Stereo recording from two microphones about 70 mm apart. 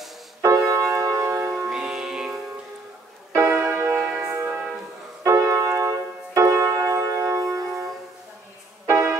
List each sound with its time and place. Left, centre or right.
0.4 s keyboard: right
1.7 s music: centre
3.3 s music: right
4.0 s music: centre
5.2 s keyboard: right
8.8 s music: right